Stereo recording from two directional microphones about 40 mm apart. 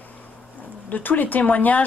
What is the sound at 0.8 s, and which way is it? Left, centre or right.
Speech, left.